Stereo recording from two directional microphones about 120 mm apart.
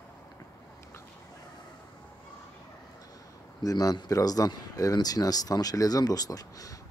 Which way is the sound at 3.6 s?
30° left (ahead or behind).